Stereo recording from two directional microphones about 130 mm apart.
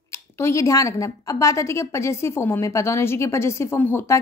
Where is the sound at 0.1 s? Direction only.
20° left (ahead or behind).